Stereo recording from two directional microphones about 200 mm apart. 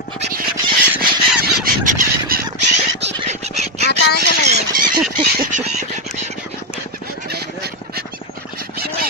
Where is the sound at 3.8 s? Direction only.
55° left (ahead or behind).